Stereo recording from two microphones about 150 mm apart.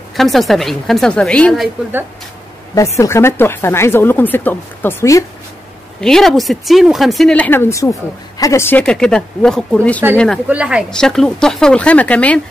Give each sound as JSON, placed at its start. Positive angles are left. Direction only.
{"t": 0.1, "sound": "speech", "side_deg": 0}
{"t": 3.0, "sound": "speech", "side_deg": 20}
{"t": 5.9, "sound": "speech", "side_deg": 5}
{"t": 10.5, "sound": "speech", "side_deg": -5}
{"t": 10.9, "sound": "speech", "side_deg": 5}